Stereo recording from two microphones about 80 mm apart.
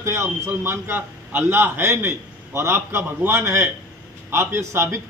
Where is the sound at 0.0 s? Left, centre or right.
Right.